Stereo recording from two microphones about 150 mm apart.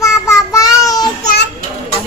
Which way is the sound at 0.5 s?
25° left (ahead or behind).